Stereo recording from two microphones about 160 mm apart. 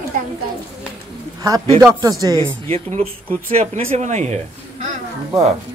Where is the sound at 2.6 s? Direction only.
40° right (ahead or behind).